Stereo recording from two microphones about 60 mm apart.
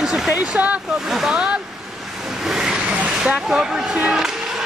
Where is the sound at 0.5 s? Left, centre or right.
Right.